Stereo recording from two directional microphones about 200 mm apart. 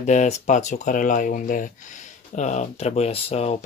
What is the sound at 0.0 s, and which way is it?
Speech, 35° left (ahead or behind).